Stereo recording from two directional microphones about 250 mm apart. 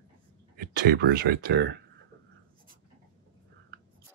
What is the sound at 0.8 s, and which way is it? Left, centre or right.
Speech, right.